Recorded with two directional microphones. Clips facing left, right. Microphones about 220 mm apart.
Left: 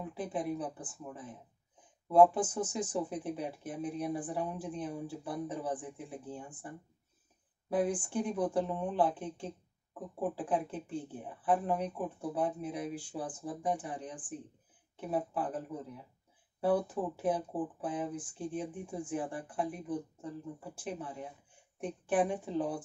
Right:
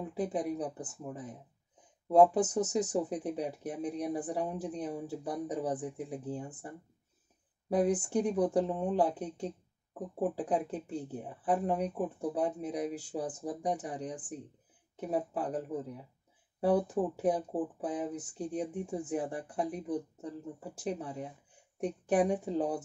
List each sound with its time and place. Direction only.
0.1 s speech: 40° right (ahead or behind)
7.7 s speech: 40° right (ahead or behind)